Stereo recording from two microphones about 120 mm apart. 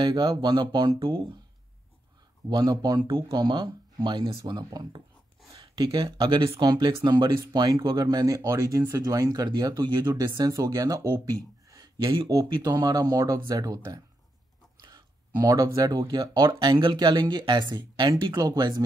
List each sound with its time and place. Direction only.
0.0 s speech: 40° right (ahead or behind)
2.5 s speech: 35° right (ahead or behind)